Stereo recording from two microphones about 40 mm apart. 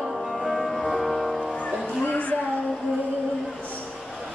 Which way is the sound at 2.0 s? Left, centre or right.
Left.